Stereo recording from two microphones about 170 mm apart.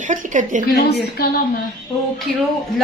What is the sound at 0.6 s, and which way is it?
Speech, 65° left (ahead or behind).